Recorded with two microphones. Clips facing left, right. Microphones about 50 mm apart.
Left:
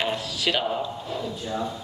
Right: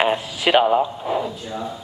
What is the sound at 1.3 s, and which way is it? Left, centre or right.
Speech, centre.